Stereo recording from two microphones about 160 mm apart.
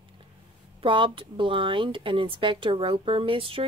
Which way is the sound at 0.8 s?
30° right (ahead or behind).